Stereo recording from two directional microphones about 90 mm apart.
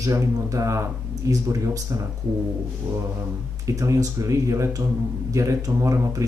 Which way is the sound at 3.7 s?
35° right (ahead or behind).